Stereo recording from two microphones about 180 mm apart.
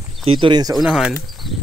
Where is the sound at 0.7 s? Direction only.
Centre (ahead or behind).